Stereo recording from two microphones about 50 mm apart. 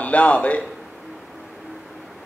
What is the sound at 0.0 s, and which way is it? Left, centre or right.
Speech, left.